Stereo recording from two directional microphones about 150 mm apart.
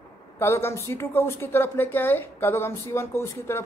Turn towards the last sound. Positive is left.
turn(degrees=15)  # may be behind; listen again after turning